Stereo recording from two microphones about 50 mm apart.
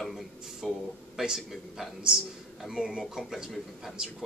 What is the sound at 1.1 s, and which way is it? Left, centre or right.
Speech, centre.